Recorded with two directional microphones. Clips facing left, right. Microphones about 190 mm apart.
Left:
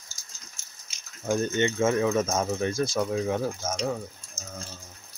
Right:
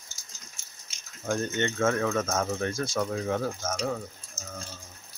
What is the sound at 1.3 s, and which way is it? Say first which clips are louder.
Speech: left 3 dB; 15° left (ahead or behind).